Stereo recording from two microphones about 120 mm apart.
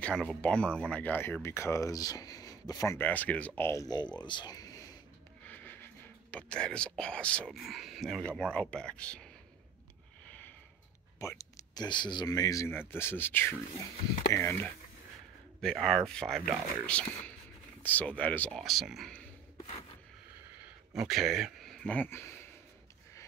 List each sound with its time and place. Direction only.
0.0 s speech: 5° left (ahead or behind); by 3.0 s 30° left (ahead or behind)
3.0 s speech: 15° left (ahead or behind)
4.2 s a sound: 40° left (ahead or behind)
5.5 s a sound: 15° left (ahead or behind)
6.3 s speech: 10° left (ahead or behind)
11.1 s speech: 25° left (ahead or behind)
15.6 s speech: 5° left (ahead or behind)
17.8 s speech: 15° left (ahead or behind)
18.6 s speech: centre (ahead or behind)
20.9 s speech: 5° right (ahead or behind); by 22.5 s 20° left (ahead or behind)